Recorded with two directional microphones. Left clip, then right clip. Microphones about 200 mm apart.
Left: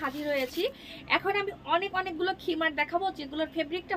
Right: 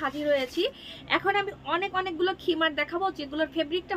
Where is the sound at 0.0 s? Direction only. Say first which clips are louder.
Right 4 dB; 20° right (ahead or behind).